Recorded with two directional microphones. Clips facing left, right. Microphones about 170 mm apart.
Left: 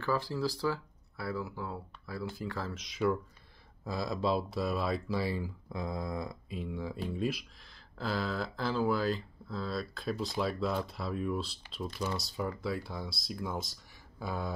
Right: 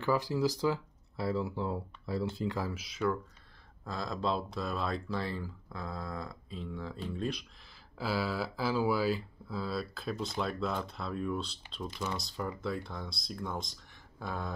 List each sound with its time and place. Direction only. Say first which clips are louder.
0.0 s speech: right 3 dB; 15° right (ahead or behind); by 7.4 s 5° left (ahead or behind)
8.0 s speech: right 1 dB; 5° right (ahead or behind)